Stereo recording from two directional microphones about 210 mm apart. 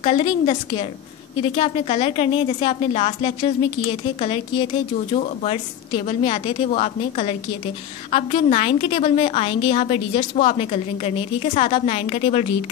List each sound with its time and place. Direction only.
0.0 s a woman's voice: 30° left (ahead or behind)